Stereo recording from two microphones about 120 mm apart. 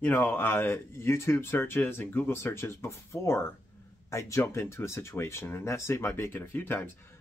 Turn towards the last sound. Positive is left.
turn(degrees=15)  # may be behind; listen again after turning